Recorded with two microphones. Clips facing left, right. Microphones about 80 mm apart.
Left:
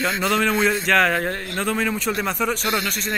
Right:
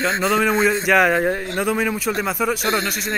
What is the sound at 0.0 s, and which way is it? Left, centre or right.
Speech, centre.